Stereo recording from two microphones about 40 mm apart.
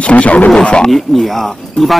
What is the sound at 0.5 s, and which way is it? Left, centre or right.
Speech, left.